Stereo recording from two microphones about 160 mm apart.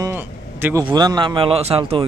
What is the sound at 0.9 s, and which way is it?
A man's voice, 25° right (ahead or behind).